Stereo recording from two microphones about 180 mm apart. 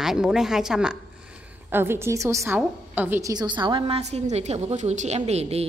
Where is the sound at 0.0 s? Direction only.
5° right (ahead or behind).